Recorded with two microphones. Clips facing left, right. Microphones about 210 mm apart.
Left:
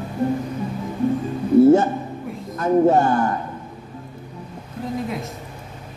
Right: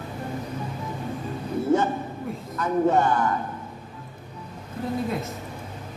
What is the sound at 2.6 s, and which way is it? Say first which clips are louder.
Speech: left 5 dB; 40° left (ahead or behind).